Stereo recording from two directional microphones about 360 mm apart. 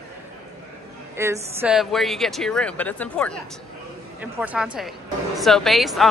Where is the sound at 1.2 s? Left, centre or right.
Centre.